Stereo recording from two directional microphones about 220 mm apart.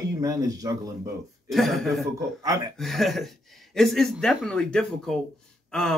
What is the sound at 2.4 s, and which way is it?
Speech, 15° right (ahead or behind).